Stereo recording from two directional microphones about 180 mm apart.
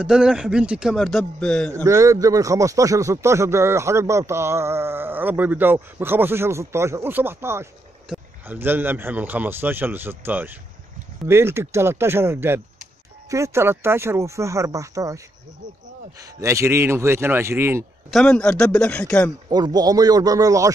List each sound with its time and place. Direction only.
0.0 s speech: 5° right (ahead or behind)
1.8 s speech: 15° right (ahead or behind)
18.1 s speech: 5° left (ahead or behind)
19.5 s speech: 20° right (ahead or behind)